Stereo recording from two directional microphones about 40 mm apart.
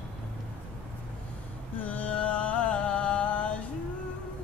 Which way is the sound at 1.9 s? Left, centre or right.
Left.